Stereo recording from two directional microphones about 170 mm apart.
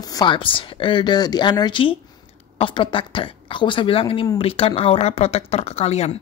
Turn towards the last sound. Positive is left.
turn(degrees=40)  # may be behind; listen again after turning